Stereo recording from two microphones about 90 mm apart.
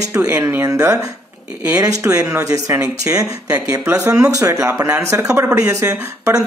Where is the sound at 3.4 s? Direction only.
20° right (ahead or behind).